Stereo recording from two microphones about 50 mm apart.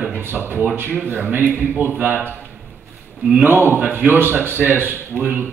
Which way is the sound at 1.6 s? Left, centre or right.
Right.